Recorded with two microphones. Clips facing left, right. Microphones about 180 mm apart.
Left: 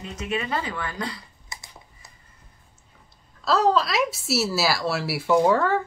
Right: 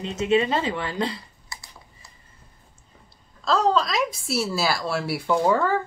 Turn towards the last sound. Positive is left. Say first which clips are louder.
# left 1 dB
turn(degrees=0)  # may be behind; listen again after turning